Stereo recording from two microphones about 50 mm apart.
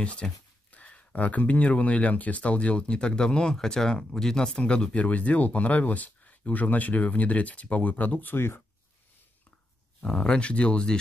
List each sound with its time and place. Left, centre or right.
0.0 s speech: left
10.0 s speech: centre